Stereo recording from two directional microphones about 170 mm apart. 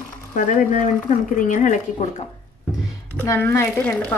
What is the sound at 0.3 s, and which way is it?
A woman's voice, 50° left (ahead or behind).